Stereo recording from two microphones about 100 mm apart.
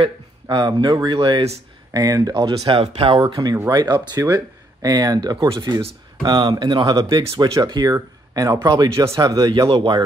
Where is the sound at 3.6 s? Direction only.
40° right (ahead or behind).